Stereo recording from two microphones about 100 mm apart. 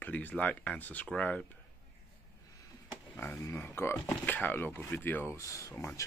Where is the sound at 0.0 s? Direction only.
15° left (ahead or behind).